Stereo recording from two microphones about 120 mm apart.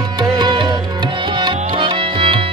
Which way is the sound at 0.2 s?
35° right (ahead or behind).